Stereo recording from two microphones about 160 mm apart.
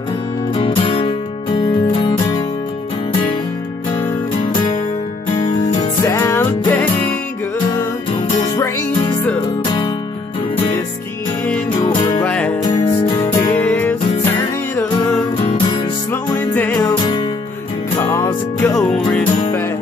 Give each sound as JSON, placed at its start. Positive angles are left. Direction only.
{"t": 0.6, "sound": "music", "side_deg": 35}
{"t": 5.8, "sound": "music", "side_deg": 20}
{"t": 12.2, "sound": "music", "side_deg": 10}
{"t": 12.6, "sound": "music", "side_deg": 25}
{"t": 13.5, "sound": "music", "side_deg": 10}
{"t": 16.5, "sound": "music", "side_deg": 10}
{"t": 16.8, "sound": "music", "side_deg": 30}
{"t": 18.1, "sound": "music", "side_deg": 15}
{"t": 18.8, "sound": "music", "side_deg": 5}